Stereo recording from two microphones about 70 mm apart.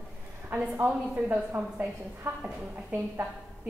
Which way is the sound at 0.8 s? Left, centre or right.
Right.